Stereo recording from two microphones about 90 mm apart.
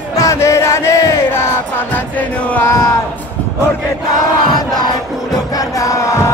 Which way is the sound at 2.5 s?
25° left (ahead or behind).